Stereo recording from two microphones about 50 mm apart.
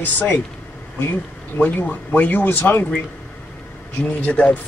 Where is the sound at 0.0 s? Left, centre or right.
Left.